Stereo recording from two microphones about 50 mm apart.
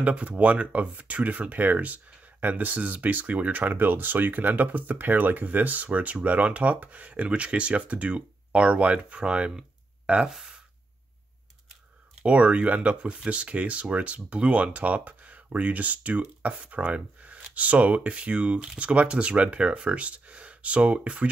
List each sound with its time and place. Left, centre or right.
0.0 s speech: right
10.2 s speech: centre
12.2 s speech: right